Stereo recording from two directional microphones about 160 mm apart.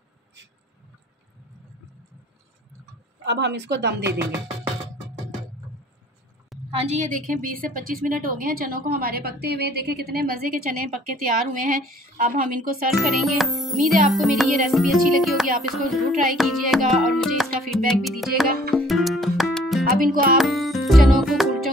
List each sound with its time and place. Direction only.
3.3 s speech: 90° right
6.7 s a woman's voice: 40° right (ahead or behind); by 10.6 s 70° right (ahead or behind)
11.6 s a woman's voice: 55° right (ahead or behind)
12.9 s music: centre (ahead or behind)
19.9 s speech: 60° right (ahead or behind)
20.3 s music: centre (ahead or behind)